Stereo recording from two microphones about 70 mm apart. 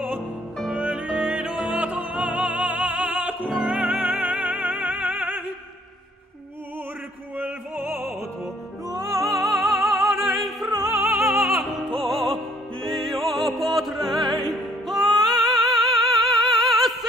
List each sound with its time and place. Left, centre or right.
0.7 s music: centre
7.3 s music: right
8.8 s music: right
9.3 s music: centre